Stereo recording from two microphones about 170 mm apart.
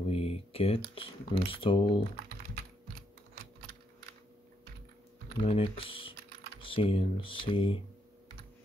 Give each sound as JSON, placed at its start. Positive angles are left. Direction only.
{"t": 0.1, "sound": "computer keyboard", "side_deg": 35}
{"t": 0.9, "sound": "speech", "side_deg": 30}
{"t": 5.4, "sound": "speech", "side_deg": 35}